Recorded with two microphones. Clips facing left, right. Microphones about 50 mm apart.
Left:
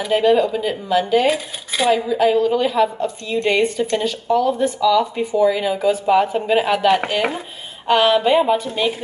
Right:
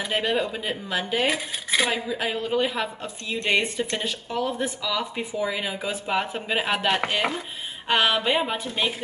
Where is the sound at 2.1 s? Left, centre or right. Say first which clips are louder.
Left 11 dB; centre.